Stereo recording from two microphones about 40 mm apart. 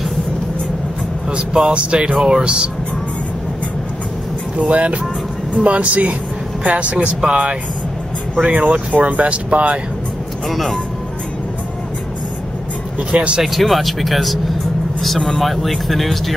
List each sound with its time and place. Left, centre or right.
1.3 s speech: right
4.6 s speech: right
10.5 s speech: centre
13.1 s speech: right
13.4 s speech: centre